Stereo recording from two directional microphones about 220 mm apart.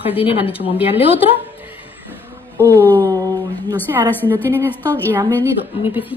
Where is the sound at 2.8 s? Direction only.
10° left (ahead or behind).